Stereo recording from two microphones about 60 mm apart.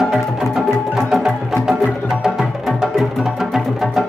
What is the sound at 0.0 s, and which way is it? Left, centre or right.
Music, centre.